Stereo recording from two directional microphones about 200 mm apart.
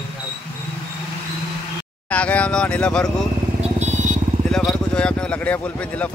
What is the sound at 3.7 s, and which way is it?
Vehicle, 35° right (ahead or behind).